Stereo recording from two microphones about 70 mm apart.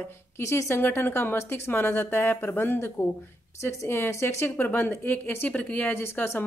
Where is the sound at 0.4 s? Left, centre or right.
Left.